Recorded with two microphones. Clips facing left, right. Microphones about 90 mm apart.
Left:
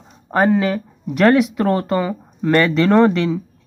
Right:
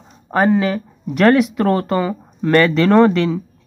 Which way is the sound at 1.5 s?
20° left (ahead or behind).